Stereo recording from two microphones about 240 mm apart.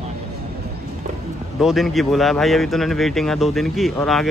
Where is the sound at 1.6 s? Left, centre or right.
Centre.